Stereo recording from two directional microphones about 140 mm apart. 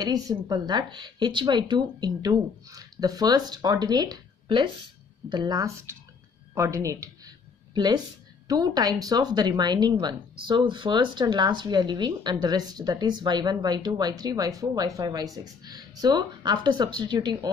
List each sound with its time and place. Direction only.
0.0 s speech: 25° right (ahead or behind)
6.5 s a sound: 20° right (ahead or behind)
8.5 s speech: 25° right (ahead or behind)